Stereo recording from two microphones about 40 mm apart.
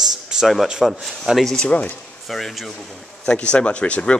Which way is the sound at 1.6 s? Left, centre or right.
Left.